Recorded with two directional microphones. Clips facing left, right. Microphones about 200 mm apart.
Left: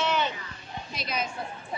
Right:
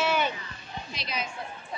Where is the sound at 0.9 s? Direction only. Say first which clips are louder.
Left 3 dB; 45° left (ahead or behind).